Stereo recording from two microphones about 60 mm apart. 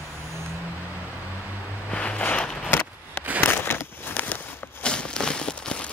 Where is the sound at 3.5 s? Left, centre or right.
Left.